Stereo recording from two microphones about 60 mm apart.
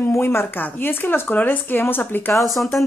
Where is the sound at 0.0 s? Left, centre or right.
Left.